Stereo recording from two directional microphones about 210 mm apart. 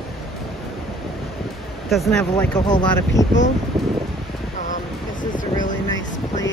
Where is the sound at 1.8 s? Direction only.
Centre (ahead or behind).